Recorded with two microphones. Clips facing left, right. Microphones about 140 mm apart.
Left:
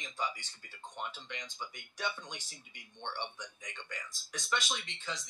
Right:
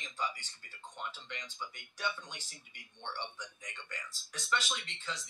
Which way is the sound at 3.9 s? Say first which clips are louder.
Left 2 dB; 15° left (ahead or behind).